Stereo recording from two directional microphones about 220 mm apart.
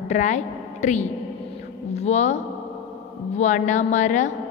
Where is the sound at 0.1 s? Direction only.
30° left (ahead or behind).